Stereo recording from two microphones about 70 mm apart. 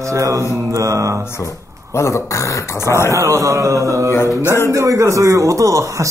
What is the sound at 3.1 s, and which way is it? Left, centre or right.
Speech, right.